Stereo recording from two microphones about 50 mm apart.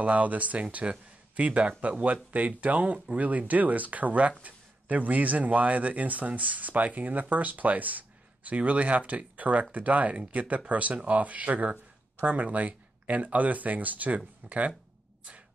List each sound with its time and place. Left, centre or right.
0.0 s speech: right